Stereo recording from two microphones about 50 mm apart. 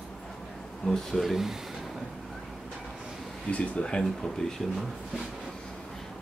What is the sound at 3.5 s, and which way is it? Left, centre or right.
Speech, left.